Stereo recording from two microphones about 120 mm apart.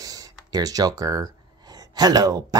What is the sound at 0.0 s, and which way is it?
Speech, 30° right (ahead or behind).